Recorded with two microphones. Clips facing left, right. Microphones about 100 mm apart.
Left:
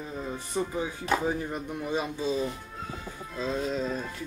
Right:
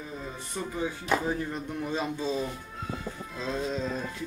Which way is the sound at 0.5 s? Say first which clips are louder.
Left 5 dB; 25° left (ahead or behind).